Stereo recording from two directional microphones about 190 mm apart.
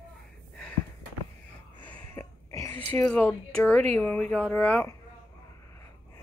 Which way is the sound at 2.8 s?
10° left (ahead or behind).